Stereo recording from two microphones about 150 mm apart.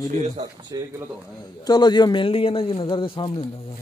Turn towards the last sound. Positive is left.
turn(degrees=35)  # may be behind; listen again after turning